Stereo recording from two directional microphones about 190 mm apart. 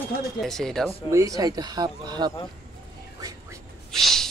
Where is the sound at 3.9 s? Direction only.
Centre (ahead or behind).